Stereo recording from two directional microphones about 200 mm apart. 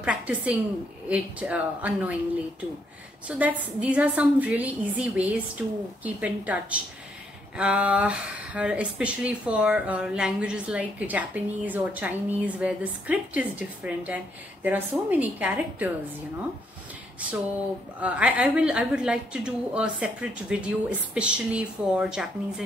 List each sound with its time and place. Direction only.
0.0 s speech: 5° right (ahead or behind)
3.3 s speech: 10° right (ahead or behind)
18.0 s a woman's voice: 5° right (ahead or behind)